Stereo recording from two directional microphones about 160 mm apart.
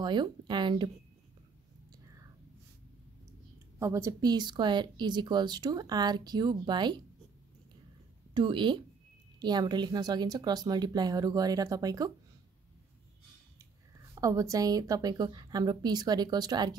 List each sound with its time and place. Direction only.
0.0 s speech: 30° right (ahead or behind)
3.8 s speech: 20° right (ahead or behind)
8.4 s speech: 30° right (ahead or behind)
14.1 s speech: 20° right (ahead or behind)